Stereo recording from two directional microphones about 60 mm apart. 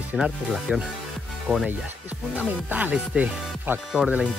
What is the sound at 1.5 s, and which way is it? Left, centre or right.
Speech, centre.